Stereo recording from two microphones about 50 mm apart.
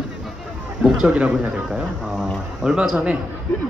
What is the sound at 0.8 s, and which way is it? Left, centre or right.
A man's voice, centre.